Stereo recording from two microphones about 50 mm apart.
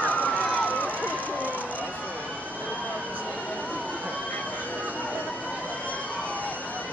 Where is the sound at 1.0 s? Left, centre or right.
Right.